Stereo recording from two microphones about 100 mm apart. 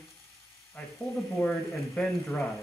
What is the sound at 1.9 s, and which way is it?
Speech, 10° left (ahead or behind).